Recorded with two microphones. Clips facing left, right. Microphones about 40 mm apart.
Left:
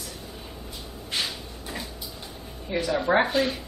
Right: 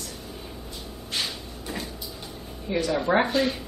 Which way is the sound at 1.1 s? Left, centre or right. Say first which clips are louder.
Left 1 dB; centre.